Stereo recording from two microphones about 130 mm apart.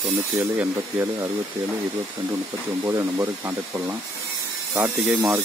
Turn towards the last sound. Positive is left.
turn(degrees=-10)  # may be behind; listen again after turning